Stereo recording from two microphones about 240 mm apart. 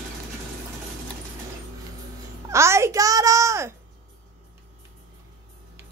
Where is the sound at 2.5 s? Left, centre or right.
Centre.